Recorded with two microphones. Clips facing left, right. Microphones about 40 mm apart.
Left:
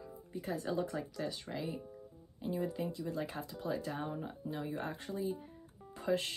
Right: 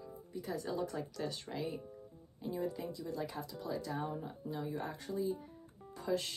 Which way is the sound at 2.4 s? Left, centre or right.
Left.